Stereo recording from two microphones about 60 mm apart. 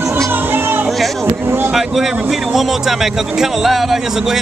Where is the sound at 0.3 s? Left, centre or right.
Right.